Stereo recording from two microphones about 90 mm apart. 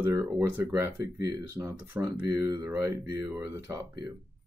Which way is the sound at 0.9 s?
40° right (ahead or behind).